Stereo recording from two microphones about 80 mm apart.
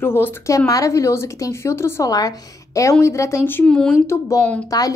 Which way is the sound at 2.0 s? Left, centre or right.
Left.